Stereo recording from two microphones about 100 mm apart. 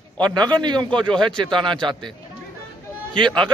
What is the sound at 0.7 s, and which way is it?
Speech, 10° left (ahead or behind).